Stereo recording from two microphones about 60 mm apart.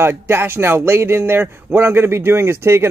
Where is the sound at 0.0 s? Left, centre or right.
Right.